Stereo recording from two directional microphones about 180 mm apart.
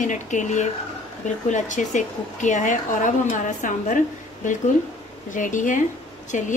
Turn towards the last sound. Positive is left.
turn(degrees=45)  # may be behind; listen again after turning